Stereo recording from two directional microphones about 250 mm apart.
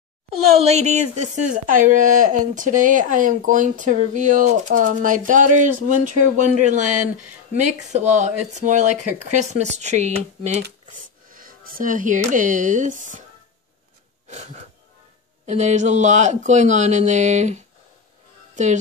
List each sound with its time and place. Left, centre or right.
0.6 s a woman's voice: right
14.2 s a sound: right
15.4 s speech: right
18.5 s music: right